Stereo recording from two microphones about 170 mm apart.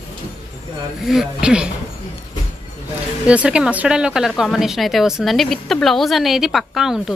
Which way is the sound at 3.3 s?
5° right (ahead or behind).